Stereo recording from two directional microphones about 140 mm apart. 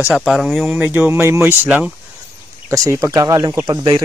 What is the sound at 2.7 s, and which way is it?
Speech, 25° right (ahead or behind).